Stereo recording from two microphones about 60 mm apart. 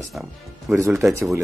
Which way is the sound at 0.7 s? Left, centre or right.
Right.